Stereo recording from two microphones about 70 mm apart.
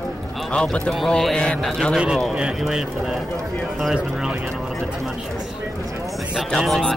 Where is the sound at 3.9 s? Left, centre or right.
Centre.